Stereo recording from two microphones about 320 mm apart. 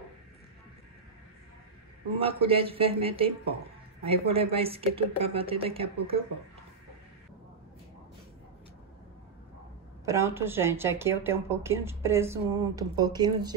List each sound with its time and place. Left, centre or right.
2.1 s speech: centre
10.0 s speech: centre